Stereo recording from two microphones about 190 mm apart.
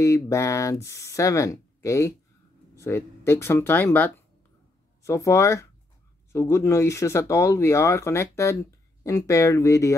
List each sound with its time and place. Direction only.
0.0 s speech: 15° left (ahead or behind)